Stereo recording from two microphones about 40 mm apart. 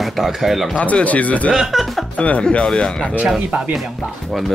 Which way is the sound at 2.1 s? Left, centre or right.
Left.